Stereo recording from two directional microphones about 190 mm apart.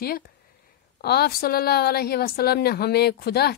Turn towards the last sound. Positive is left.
turn(degrees=55)  # may be behind; listen again after turning